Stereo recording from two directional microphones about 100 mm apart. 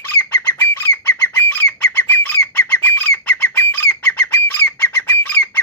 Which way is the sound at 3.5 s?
20° left (ahead or behind).